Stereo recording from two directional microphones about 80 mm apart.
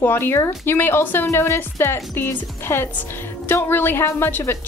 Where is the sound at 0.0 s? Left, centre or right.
Left.